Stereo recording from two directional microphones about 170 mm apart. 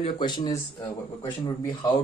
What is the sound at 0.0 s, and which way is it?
A man's voice, 25° left (ahead or behind).